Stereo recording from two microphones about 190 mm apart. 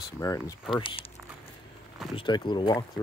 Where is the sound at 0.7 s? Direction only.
30° left (ahead or behind).